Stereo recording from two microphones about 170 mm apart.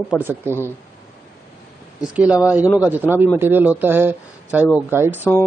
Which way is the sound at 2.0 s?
5° right (ahead or behind).